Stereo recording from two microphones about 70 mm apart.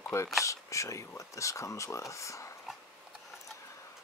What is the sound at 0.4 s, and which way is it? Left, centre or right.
Speech, left.